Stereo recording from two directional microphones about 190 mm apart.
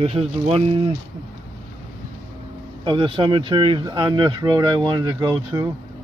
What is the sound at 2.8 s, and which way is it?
Speech, 25° right (ahead or behind).